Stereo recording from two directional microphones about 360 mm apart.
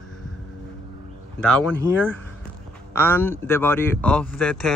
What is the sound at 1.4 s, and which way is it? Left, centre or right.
Speech, centre.